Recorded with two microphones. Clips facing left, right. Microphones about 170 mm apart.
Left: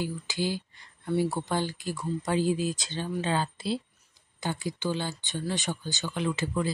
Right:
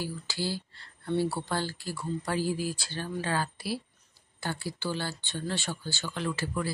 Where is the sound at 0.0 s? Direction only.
20° left (ahead or behind).